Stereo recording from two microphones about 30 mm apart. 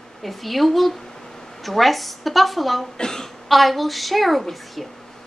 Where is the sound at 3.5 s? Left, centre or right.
Centre.